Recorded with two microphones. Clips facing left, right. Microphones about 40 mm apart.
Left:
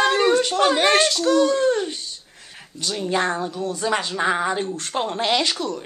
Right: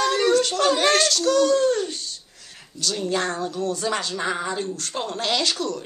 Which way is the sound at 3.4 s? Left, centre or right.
Centre.